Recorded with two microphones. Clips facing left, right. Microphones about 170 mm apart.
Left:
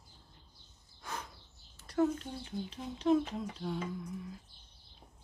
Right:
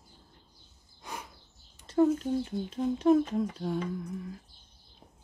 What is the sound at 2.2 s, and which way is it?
Speech, 50° right (ahead or behind).